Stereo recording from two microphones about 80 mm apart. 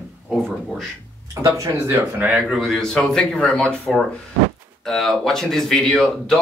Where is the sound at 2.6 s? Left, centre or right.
Centre.